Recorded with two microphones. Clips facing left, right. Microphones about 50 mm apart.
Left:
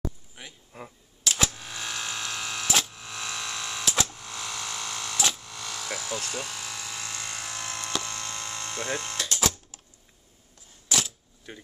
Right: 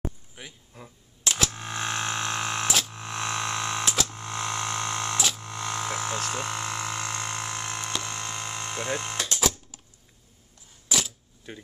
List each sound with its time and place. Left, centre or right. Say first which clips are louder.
0.4 s speech: right 1 dB; centre
0.7 s speech: left 5 dB; left
1.5 s a sound: right 5 dB; right
5.4 s music: right 6 dB; right
6.3 s a sound: right 5 dB; right
7.9 s hum: right 1 dB; right
10.9 s camera: even; centre